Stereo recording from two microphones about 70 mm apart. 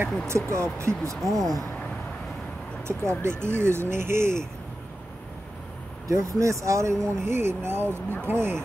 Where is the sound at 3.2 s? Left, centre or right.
Right.